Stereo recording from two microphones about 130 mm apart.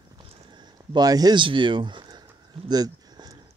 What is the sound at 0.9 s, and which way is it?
Speech, 30° right (ahead or behind).